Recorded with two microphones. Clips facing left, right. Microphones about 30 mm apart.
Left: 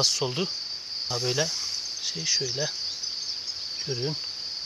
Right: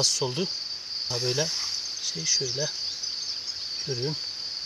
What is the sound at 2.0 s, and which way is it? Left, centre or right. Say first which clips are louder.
Speech: even; centre.